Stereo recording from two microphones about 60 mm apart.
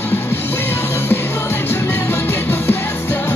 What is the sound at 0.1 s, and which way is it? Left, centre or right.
Music, left.